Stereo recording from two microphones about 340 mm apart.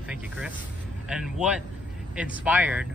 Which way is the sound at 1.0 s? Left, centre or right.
Centre.